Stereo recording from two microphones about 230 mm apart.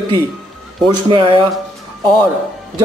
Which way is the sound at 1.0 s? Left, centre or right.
Right.